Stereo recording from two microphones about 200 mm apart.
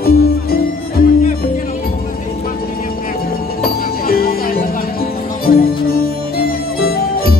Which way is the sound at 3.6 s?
50° left (ahead or behind).